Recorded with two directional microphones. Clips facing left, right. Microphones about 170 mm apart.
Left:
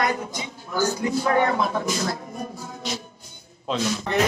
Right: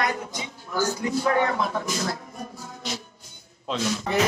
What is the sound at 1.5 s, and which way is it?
Speech, 20° left (ahead or behind).